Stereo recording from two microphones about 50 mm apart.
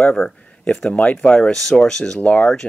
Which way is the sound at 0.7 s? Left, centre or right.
Left.